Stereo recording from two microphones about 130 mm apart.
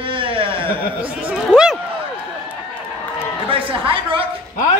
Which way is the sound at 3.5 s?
45° right (ahead or behind).